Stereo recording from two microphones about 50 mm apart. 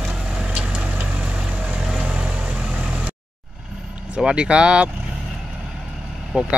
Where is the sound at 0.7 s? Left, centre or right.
Right.